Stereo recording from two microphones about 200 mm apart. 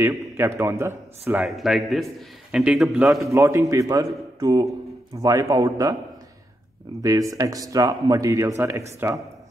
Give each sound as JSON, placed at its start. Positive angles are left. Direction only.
{"t": 0.0, "sound": "a man's voice", "side_deg": -15}
{"t": 3.3, "sound": "speech", "side_deg": -15}
{"t": 7.0, "sound": "speech", "side_deg": -15}